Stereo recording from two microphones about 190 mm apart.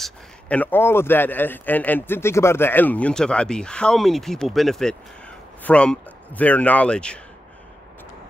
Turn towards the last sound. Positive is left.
turn(degrees=5)  # may be behind; listen again after turning